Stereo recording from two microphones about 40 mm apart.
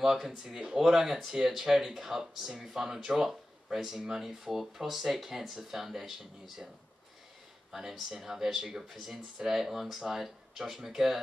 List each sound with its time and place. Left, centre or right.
0.0 s speech: centre
0.7 s speech: centre
7.9 s speech: centre